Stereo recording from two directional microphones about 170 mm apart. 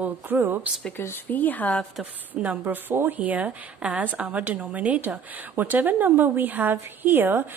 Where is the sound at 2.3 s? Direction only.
10° right (ahead or behind).